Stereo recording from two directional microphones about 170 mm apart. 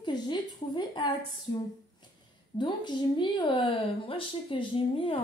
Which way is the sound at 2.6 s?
25° left (ahead or behind).